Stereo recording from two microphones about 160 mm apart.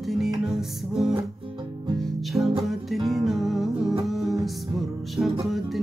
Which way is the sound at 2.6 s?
Centre (ahead or behind).